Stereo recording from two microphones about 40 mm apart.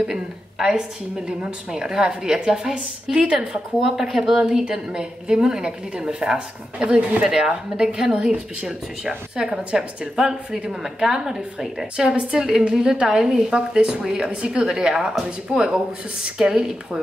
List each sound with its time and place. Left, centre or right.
0.0 s a woman's voice: centre
7.2 s a woman's voice: centre
9.7 s a woman's voice: centre
12.1 s a woman's voice: right
12.4 s a woman's voice: centre